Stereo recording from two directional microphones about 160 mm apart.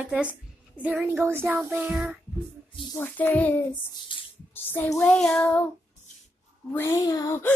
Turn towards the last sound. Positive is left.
turn(degrees=20)  # may be behind; listen again after turning